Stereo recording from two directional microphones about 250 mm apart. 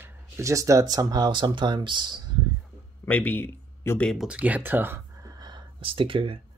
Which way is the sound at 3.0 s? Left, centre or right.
Centre.